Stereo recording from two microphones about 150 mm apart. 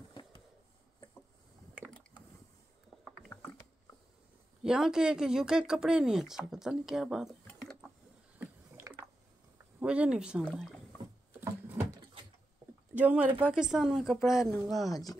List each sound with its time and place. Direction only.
0.1 s a sound: 30° left (ahead or behind)
4.6 s speech: 5° right (ahead or behind)
7.4 s a sound: 5° left (ahead or behind)
8.4 s rowboat: 15° right (ahead or behind)
9.8 s speech: 5° right (ahead or behind)
10.4 s speech: 5° left (ahead or behind)
11.4 s a sound: 15° right (ahead or behind)
12.9 s speech: 10° right (ahead or behind)
14.9 s speech: 25° left (ahead or behind)